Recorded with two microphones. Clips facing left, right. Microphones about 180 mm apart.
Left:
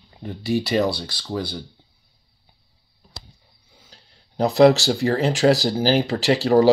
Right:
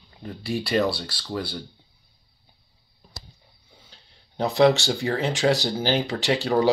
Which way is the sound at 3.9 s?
35° left (ahead or behind).